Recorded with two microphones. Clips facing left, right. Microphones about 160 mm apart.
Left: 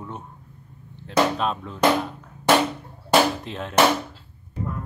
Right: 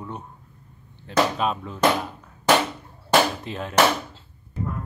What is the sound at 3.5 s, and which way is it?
Speech, centre (ahead or behind).